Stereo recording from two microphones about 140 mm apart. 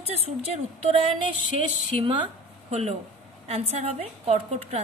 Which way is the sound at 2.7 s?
50° right (ahead or behind).